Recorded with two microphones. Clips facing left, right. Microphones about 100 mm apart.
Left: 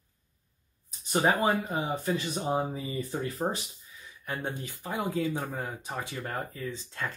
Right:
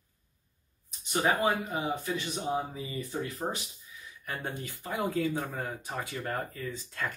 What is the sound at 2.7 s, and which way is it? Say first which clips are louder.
Speech: left 2 dB; 40° left (ahead or behind).